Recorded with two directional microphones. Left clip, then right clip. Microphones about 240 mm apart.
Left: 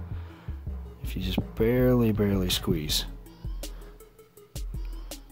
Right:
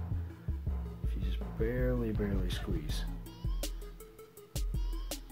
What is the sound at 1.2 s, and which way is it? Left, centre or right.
Speech, left.